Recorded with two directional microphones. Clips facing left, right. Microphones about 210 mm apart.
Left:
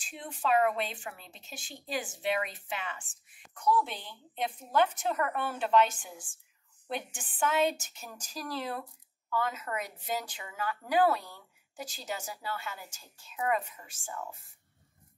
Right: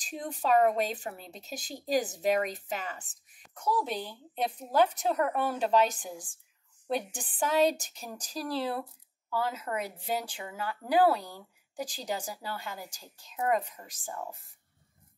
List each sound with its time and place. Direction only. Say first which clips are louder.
0.0 s speech: right 2 dB; 40° right (ahead or behind)